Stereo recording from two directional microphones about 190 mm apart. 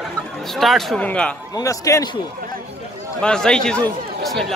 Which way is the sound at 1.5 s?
15° left (ahead or behind).